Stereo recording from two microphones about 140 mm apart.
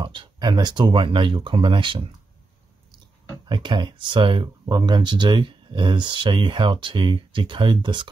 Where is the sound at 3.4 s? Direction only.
35° right (ahead or behind).